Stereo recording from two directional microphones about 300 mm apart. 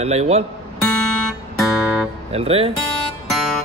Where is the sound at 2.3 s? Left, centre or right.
Centre.